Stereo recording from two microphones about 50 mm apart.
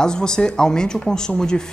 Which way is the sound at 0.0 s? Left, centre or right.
Centre.